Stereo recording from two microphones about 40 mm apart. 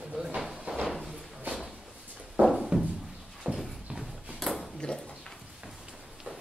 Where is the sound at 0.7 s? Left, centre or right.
Right.